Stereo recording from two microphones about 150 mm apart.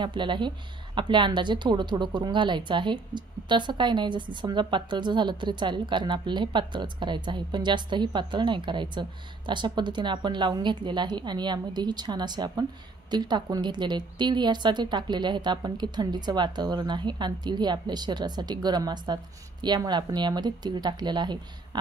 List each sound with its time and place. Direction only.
0.0 s a woman's voice: 30° right (ahead or behind)